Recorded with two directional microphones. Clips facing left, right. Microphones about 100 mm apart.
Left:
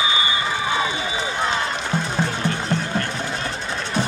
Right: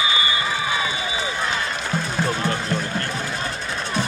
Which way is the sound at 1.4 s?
25° left (ahead or behind).